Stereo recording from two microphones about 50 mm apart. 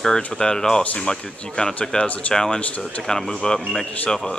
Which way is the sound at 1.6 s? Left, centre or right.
Left.